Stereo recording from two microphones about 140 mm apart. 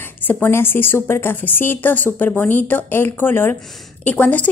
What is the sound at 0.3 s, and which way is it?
Speech, 15° left (ahead or behind).